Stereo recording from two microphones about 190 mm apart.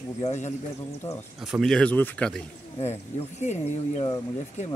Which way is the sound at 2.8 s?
35° left (ahead or behind).